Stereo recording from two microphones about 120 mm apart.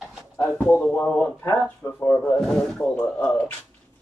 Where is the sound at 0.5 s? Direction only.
15° left (ahead or behind).